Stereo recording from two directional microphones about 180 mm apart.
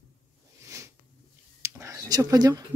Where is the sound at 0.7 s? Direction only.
15° right (ahead or behind).